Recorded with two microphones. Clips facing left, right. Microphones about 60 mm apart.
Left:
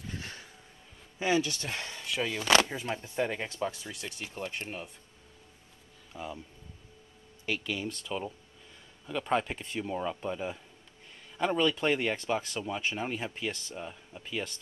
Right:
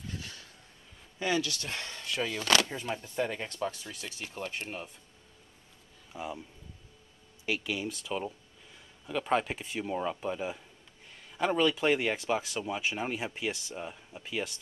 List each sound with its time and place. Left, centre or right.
1.2 s speech: left
1.7 s speech: centre
6.1 s speech: centre
7.4 s speech: centre